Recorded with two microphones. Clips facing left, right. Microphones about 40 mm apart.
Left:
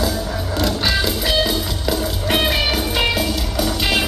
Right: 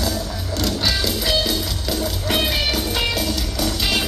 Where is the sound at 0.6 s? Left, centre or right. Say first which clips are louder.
Left 2 dB; centre.